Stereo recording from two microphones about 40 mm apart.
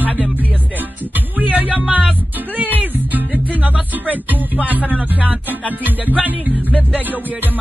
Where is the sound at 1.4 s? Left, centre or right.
Right.